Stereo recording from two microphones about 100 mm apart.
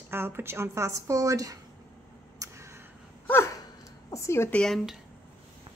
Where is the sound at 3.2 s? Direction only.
25° left (ahead or behind).